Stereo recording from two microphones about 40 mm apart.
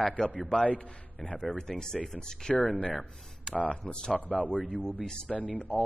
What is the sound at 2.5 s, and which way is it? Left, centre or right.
Speech, left.